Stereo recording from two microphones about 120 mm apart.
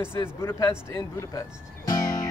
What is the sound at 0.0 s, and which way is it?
Speech, 25° left (ahead or behind).